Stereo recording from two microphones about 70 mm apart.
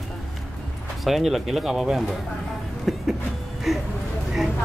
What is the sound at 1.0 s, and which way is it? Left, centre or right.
Speech, centre.